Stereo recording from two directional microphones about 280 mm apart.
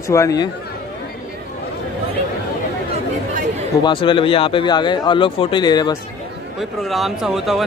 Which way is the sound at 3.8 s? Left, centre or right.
Centre.